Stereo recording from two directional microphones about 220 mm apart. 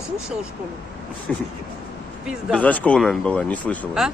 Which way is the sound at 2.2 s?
5° right (ahead or behind).